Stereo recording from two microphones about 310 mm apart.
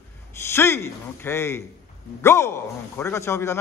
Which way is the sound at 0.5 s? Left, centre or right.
Centre.